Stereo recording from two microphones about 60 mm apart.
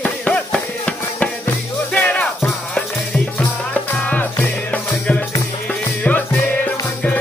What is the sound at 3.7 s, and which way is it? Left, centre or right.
Music, left.